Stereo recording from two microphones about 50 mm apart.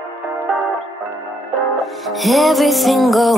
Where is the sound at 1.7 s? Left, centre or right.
Centre.